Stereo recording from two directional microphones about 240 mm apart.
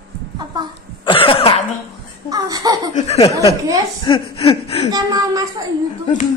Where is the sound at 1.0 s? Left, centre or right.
Left.